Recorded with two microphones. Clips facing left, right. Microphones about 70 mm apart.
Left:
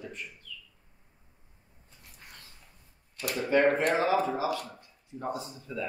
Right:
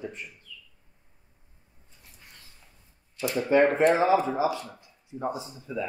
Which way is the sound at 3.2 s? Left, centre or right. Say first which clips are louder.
Right 5 dB; left.